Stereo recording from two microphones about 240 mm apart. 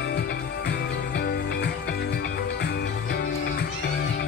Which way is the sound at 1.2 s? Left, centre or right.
Left.